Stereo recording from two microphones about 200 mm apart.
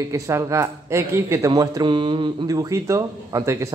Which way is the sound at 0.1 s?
15° right (ahead or behind).